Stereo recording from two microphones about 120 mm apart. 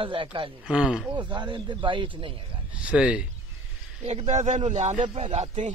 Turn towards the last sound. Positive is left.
turn(degrees=-65)  # may be behind; listen again after turning